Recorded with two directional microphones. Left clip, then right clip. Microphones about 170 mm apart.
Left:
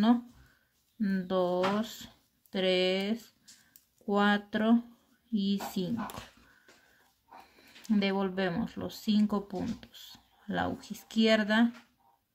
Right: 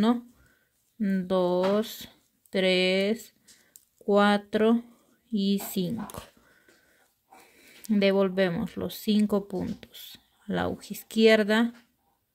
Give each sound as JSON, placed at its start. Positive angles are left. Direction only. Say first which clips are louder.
{"t": 0.9, "sound": "speech", "louder": "right 4 dB", "side_deg": -35}
{"t": 7.8, "sound": "speech", "louder": "right 7 dB", "side_deg": -40}